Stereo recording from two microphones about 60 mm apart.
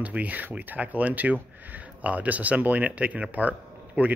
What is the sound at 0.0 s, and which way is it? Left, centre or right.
Speech, right.